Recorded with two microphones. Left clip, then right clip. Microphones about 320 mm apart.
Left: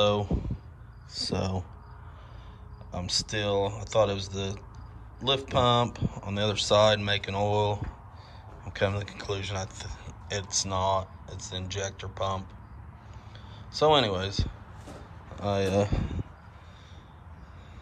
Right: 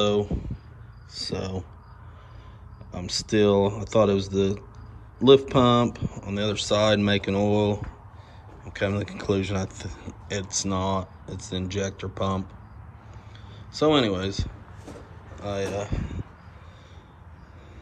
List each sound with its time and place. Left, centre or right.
0.0 s a sound: centre
1.1 s speech: centre
2.9 s speech: centre
13.7 s speech: centre